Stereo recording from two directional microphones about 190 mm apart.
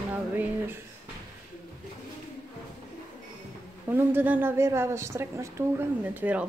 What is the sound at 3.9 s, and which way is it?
A woman's voice, 10° right (ahead or behind).